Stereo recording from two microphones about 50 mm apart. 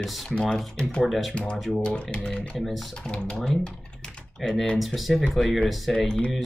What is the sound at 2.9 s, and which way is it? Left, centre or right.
Speech, centre.